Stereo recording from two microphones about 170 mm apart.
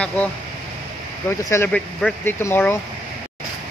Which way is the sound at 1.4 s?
15° left (ahead or behind).